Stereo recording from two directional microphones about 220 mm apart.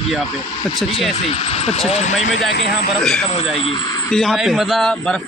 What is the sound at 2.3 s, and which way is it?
Speech, 45° left (ahead or behind).